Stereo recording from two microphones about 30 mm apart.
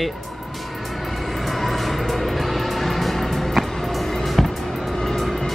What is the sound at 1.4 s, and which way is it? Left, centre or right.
Music, centre.